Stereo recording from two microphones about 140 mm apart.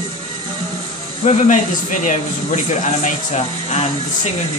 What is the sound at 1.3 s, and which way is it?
Speech, 55° left (ahead or behind).